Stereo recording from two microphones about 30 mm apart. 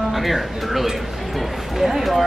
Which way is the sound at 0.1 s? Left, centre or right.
Centre.